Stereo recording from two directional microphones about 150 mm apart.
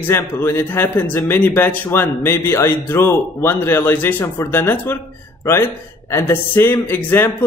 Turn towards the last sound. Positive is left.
turn(degrees=15)  # may be behind; listen again after turning